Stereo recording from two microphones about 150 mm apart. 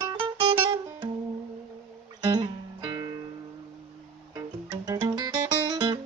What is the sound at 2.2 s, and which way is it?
Music, 30° right (ahead or behind).